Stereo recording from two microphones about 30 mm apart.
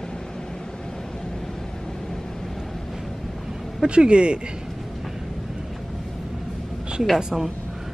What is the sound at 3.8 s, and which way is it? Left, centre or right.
Speech, right.